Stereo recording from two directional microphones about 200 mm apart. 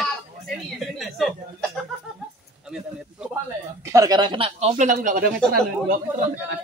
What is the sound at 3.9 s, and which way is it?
Speech, 20° right (ahead or behind).